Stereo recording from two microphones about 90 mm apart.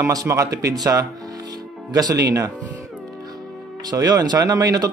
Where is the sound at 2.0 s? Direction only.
40° right (ahead or behind).